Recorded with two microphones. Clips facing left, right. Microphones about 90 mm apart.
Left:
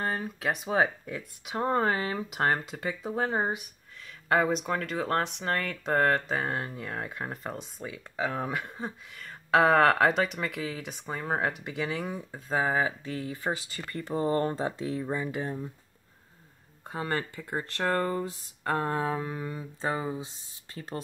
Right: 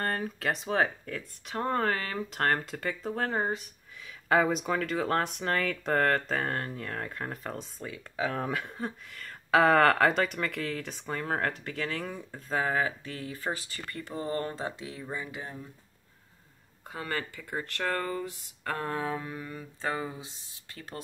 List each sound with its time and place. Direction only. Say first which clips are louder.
0.0 s speech: even; 5° left (ahead or behind)
4.0 s speech: even; centre (ahead or behind)
12.5 s speech: left 2 dB; 20° left (ahead or behind)
16.8 s speech: left 3 dB; 30° left (ahead or behind)